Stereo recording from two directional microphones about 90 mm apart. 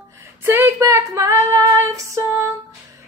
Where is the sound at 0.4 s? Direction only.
25° right (ahead or behind).